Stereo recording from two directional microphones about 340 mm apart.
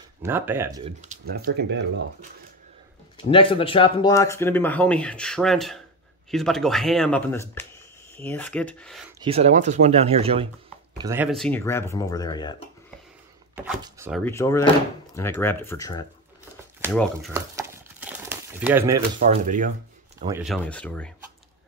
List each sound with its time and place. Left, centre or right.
0.2 s speech: centre; by 1.9 s right
3.3 s speech: centre
9.2 s speech: centre
13.6 s speech: centre
14.2 s speech: centre
17.3 s crumpling: centre
19.1 s speech: right
20.2 s speech: centre